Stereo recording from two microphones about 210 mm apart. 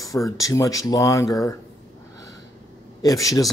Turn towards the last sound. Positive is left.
turn(degrees=15)  # may be behind; listen again after turning